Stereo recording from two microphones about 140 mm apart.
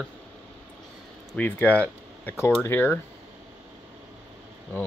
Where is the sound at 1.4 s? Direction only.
10° left (ahead or behind).